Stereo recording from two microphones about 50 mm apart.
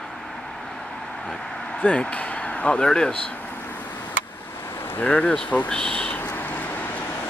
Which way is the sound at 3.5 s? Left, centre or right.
Left.